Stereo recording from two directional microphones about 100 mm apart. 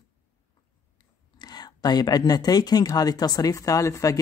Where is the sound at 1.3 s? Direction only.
45° left (ahead or behind).